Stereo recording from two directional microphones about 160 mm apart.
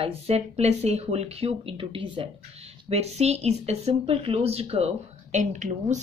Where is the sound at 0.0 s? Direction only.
40° right (ahead or behind).